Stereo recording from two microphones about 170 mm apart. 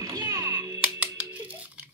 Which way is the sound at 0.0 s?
20° right (ahead or behind).